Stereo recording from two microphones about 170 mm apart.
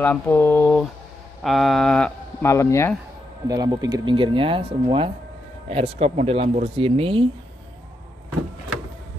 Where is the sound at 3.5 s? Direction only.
20° right (ahead or behind).